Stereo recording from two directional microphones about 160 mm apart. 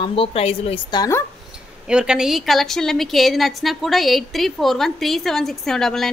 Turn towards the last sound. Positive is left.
turn(degrees=5)  # may be behind; listen again after turning